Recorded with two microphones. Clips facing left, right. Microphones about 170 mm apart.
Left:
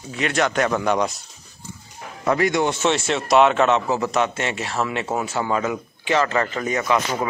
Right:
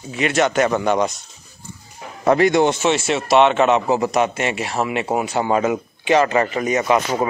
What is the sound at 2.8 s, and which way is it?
Speech, 5° right (ahead or behind).